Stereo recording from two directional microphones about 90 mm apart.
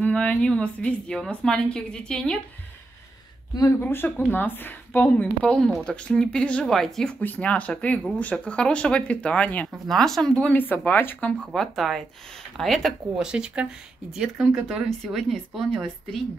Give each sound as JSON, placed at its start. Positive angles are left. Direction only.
{"t": 0.0, "sound": "a woman's voice", "side_deg": 15}
{"t": 3.8, "sound": "a woman's voice", "side_deg": 25}
{"t": 5.4, "sound": "a woman's voice", "side_deg": 10}
{"t": 7.2, "sound": "a woman's voice", "side_deg": 15}
{"t": 9.7, "sound": "speech", "side_deg": 5}
{"t": 10.5, "sound": "a woman's voice", "side_deg": 20}
{"t": 11.5, "sound": "speech", "side_deg": 5}
{"t": 13.3, "sound": "speech", "side_deg": -10}